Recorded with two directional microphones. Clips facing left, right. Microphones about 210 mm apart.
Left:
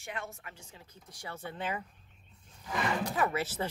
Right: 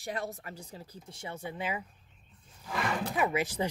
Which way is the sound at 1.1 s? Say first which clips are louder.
Right 2 dB; 15° right (ahead or behind).